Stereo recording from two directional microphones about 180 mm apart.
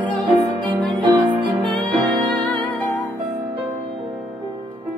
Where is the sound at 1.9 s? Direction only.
10° left (ahead or behind).